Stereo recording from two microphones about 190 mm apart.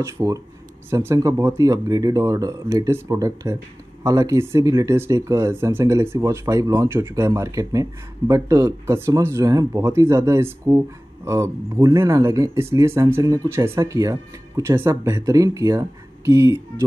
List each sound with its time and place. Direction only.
0.0 s speech: 15° right (ahead or behind)